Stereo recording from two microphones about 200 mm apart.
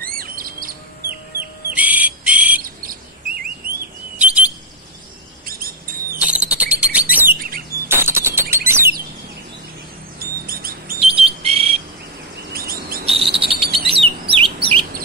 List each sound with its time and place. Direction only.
0.0 s chirp: 45° right (ahead or behind)
1.8 s a sound: 10° right (ahead or behind)
2.6 s chirp: 45° right (ahead or behind)
4.2 s alarm: 5° right (ahead or behind)
5.4 s rodents: 45° right (ahead or behind)
6.1 s a sound: 5° right (ahead or behind)
6.5 s chirp: 5° right (ahead or behind)
7.3 s chirp: 45° right (ahead or behind)
7.9 s chirp: 10° right (ahead or behind)
10.1 s a sound: 45° right (ahead or behind)
11.2 s bird: 30° right (ahead or behind)
12.5 s bird vocalization: 45° right (ahead or behind)
13.0 s cricket: 30° right (ahead or behind)
14.3 s chirp: 30° right (ahead or behind)